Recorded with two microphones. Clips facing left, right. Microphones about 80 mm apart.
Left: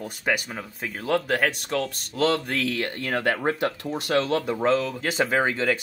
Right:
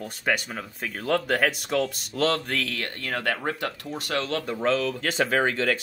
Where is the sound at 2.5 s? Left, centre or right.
Centre.